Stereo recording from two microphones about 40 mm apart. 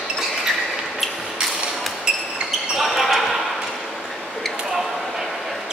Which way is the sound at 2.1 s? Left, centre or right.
Right.